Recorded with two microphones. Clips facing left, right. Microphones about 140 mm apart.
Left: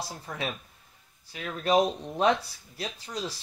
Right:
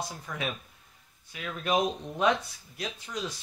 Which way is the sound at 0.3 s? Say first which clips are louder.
Left 2 dB; 35° left (ahead or behind).